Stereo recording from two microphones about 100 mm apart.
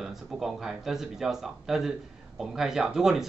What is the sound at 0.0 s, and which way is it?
Speech, centre (ahead or behind).